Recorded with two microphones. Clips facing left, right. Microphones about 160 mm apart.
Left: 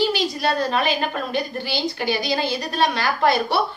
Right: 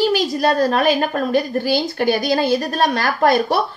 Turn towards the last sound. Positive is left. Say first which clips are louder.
# right 4 dB
turn(degrees=-45)  # may be behind; listen again after turning